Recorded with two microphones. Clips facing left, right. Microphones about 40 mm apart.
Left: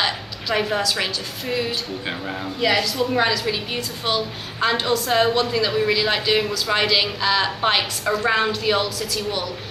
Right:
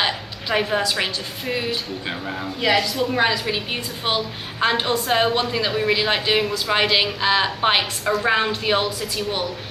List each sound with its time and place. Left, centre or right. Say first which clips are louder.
0.0 s a sound: even; centre
0.8 s a woman's voice: even; centre
1.7 s a woman's voice: even; centre
8.0 s speech: even; centre
8.3 s a woman's voice: even; centre